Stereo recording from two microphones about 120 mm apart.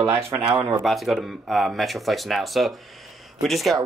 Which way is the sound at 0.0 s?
20° right (ahead or behind).